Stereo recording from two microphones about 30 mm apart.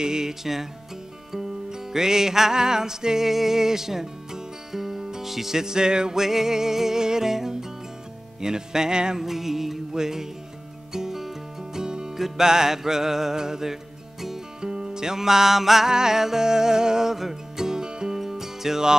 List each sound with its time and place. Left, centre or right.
0.0 s music: right
1.7 s music: centre
3.3 s speech: centre; by 6.1 s right
6.1 s music: centre
9.2 s music: centre
11.8 s music: right; by 15.9 s centre
15.9 s music: centre
17.1 s music: centre
17.6 s music: right
18.1 s music: centre